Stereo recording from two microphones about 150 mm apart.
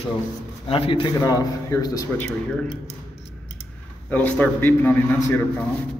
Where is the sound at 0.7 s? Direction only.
35° left (ahead or behind).